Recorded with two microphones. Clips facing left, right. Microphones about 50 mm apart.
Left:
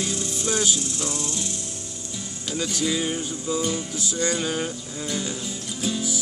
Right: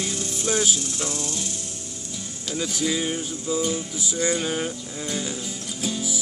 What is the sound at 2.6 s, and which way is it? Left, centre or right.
Music, centre.